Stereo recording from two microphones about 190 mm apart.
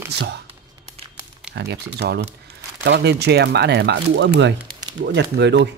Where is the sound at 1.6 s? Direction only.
60° right (ahead or behind).